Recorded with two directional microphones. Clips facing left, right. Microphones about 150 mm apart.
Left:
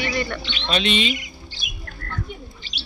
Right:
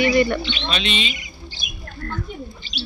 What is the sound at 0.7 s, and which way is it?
Speech, 55° left (ahead or behind).